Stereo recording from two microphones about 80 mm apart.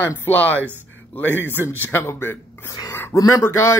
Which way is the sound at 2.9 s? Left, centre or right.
Left.